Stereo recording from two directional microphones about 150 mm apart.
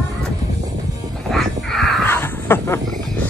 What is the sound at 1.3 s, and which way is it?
Music, centre (ahead or behind).